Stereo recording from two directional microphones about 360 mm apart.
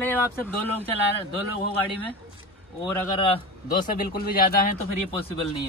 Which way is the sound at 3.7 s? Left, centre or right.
Left.